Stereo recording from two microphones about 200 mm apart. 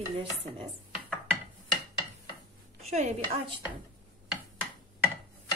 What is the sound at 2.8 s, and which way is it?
Dishes, 35° right (ahead or behind).